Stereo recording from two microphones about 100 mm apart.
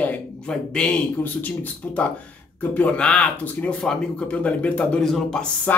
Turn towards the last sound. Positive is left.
turn(degrees=5)  # may be behind; listen again after turning